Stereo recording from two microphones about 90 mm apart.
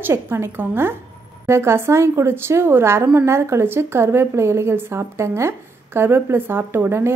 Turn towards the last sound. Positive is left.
turn(degrees=-25)  # may be behind; listen again after turning